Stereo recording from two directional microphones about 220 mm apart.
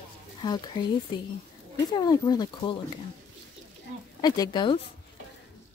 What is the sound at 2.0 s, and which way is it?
Speech, 20° left (ahead or behind).